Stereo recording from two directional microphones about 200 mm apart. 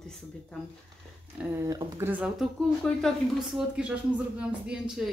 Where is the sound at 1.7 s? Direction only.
15° right (ahead or behind).